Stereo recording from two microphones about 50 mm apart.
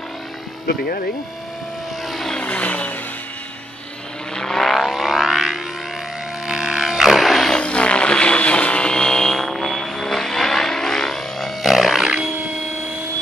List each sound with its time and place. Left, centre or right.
2.0 s vehicle: centre
2.4 s vehicle: left
4.4 s vehicle: centre
6.4 s a sound: centre
7.5 s vehicle: left; by 12.3 s centre